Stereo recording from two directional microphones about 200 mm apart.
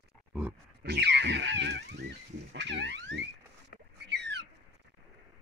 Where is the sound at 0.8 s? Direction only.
55° right (ahead or behind).